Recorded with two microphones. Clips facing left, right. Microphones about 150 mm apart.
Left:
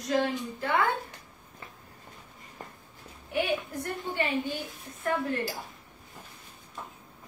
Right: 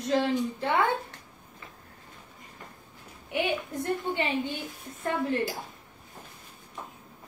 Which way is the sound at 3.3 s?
20° right (ahead or behind).